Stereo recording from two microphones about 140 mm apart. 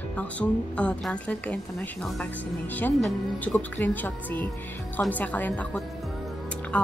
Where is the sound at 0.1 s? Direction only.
10° left (ahead or behind).